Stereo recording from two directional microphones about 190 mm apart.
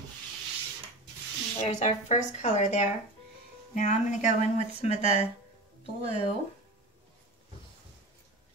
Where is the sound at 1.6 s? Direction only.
35° left (ahead or behind).